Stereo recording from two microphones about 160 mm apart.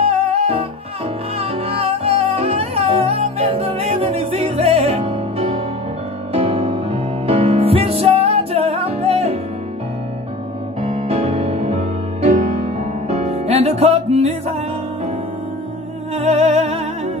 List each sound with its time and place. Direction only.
0.0 s music: 40° right (ahead or behind)
10.8 s music: 40° right (ahead or behind)
16.2 s music: 40° right (ahead or behind)